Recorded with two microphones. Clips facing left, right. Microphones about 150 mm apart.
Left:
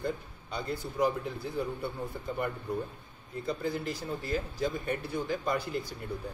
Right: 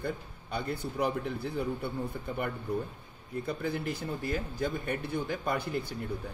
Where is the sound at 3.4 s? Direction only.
60° right (ahead or behind).